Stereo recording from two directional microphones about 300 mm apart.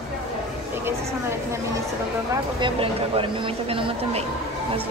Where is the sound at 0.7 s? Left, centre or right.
Centre.